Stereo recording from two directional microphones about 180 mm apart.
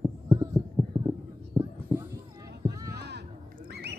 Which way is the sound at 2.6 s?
20° right (ahead or behind).